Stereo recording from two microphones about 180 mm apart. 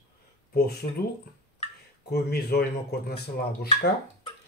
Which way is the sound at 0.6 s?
60° left (ahead or behind).